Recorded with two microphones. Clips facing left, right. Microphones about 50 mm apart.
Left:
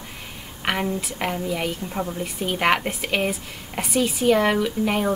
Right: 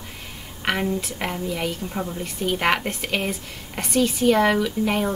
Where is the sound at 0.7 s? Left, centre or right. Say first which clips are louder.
Right 1 dB; centre.